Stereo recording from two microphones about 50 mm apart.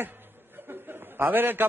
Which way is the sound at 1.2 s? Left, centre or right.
Right.